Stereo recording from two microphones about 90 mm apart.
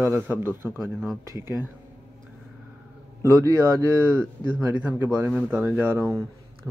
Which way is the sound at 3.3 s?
40° right (ahead or behind).